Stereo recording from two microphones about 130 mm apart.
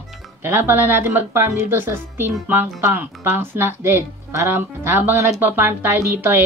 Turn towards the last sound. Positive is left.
turn(degrees=-15)  # may be behind; listen again after turning